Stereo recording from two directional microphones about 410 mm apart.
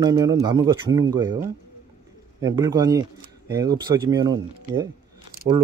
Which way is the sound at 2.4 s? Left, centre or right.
Centre.